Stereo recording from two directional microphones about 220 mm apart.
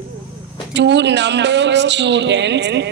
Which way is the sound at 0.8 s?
50° right (ahead or behind).